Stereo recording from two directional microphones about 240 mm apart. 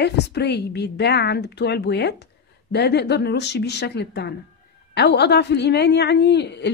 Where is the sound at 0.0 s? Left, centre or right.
Left.